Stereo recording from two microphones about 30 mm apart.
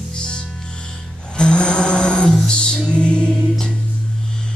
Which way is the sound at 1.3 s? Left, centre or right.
Left.